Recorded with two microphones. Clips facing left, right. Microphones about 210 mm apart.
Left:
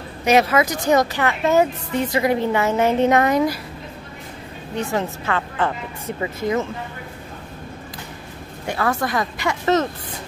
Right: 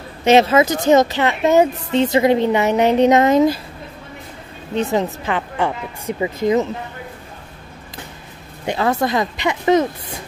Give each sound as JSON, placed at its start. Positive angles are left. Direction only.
{"t": 0.2, "sound": "a woman's voice", "side_deg": -25}
{"t": 4.7, "sound": "speech", "side_deg": -20}
{"t": 8.6, "sound": "a woman's voice", "side_deg": -20}